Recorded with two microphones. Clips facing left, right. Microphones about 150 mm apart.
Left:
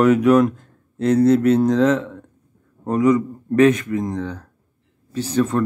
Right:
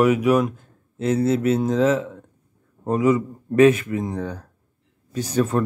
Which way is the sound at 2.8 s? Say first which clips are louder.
Left 2 dB; 25° right (ahead or behind).